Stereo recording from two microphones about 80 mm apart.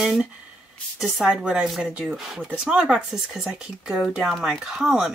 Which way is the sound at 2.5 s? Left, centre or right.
Centre.